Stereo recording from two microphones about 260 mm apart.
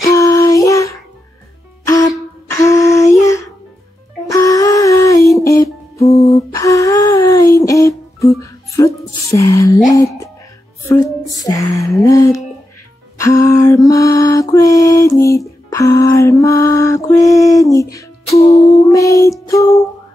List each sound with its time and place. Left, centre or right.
0.1 s music: centre
1.9 s a sound: centre
4.3 s wail: centre
5.4 s music: centre
5.9 s a sound: left
6.3 s humming: centre
10.8 s music: centre
13.2 s mantra: centre
18.8 s music: centre